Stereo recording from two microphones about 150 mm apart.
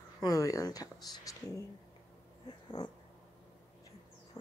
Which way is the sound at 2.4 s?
30° left (ahead or behind).